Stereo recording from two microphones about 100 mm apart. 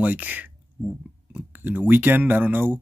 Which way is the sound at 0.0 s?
15° right (ahead or behind).